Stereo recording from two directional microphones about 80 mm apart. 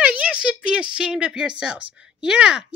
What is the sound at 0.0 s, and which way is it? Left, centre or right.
Speech, centre.